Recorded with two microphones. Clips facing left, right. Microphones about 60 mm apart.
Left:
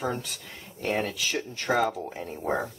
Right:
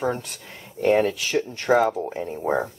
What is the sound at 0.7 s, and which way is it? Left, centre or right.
Speech, right.